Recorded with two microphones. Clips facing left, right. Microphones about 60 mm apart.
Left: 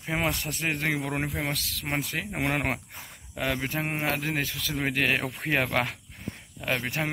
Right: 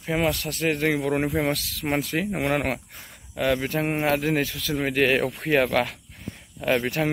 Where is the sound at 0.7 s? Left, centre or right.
Centre.